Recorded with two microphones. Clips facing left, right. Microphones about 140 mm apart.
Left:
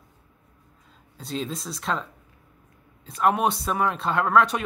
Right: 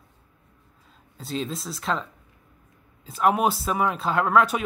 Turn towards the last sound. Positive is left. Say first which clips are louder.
# even
turn(degrees=-5)  # may be behind; listen again after turning